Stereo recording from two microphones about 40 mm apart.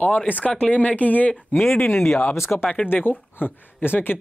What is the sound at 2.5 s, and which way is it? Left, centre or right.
Speech, left.